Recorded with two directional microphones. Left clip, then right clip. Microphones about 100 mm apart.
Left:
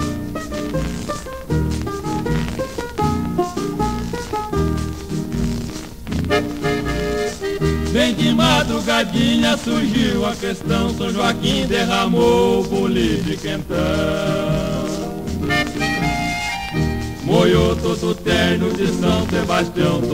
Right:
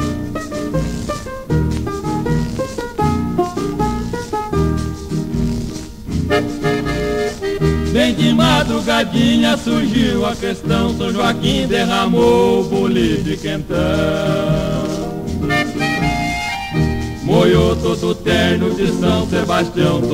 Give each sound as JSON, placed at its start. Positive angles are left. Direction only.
{"t": 3.0, "sound": "music", "side_deg": 35}
{"t": 6.2, "sound": "music", "side_deg": 40}